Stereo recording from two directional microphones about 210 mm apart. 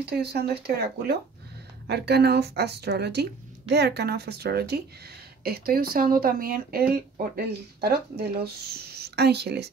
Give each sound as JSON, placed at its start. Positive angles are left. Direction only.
{"t": 0.0, "sound": "speech", "side_deg": -50}